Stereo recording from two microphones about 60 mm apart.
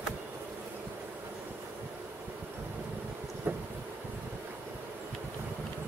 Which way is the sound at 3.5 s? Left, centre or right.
Right.